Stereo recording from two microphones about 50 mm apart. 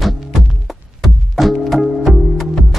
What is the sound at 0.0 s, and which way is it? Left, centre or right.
Music, centre.